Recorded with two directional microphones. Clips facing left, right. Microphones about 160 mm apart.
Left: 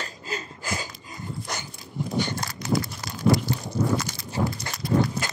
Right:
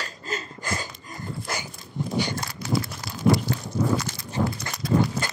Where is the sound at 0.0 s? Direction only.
15° left (ahead or behind).